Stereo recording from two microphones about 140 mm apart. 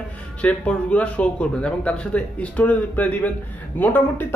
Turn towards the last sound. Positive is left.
turn(degrees=15)  # may be behind; listen again after turning